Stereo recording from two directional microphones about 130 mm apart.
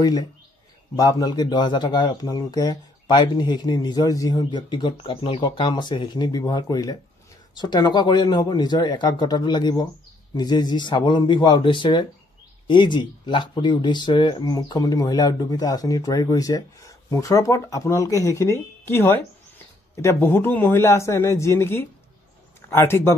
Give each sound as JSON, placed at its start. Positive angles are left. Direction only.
{"t": 0.0, "sound": "a man's voice", "side_deg": 30}